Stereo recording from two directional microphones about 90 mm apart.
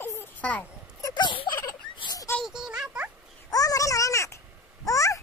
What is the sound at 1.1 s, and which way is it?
Turkey, 65° left (ahead or behind).